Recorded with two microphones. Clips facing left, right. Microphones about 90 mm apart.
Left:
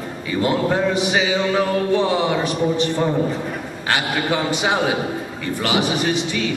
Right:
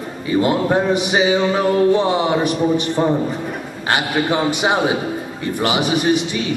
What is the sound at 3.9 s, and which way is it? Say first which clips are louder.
A man's voice: right 3 dB; 20° right (ahead or behind).